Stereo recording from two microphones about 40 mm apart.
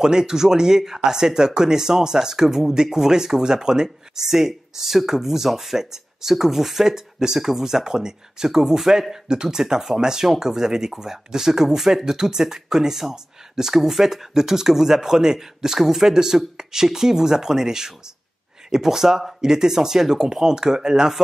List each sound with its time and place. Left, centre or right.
0.0 s speech: centre